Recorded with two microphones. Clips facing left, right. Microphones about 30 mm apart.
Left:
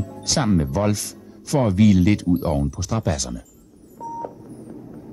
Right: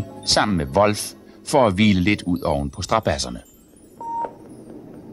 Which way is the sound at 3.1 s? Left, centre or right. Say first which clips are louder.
Right 2 dB; right.